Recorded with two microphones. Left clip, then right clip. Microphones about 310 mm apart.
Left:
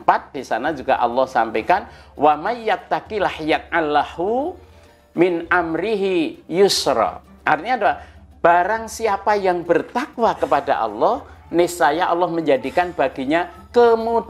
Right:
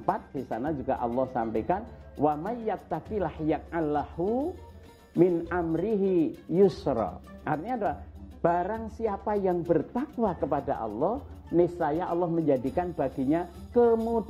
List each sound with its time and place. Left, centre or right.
0.1 s a man's voice: centre
4.2 s speech: left
5.1 s a man's voice: centre
10.9 s a man's voice: centre
11.5 s a man's voice: centre